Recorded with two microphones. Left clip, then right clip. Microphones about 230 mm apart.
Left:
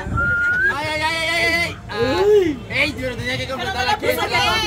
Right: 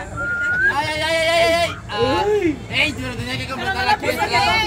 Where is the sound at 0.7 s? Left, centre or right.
Centre.